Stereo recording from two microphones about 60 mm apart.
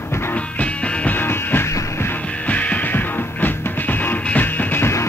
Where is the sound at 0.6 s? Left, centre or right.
Left.